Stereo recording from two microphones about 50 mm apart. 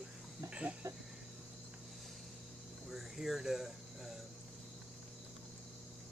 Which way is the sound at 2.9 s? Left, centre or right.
Centre.